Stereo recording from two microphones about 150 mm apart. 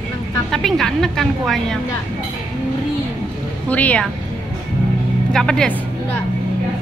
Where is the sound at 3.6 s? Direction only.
10° left (ahead or behind).